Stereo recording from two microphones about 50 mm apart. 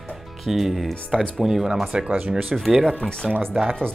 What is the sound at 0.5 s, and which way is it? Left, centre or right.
Speech, centre.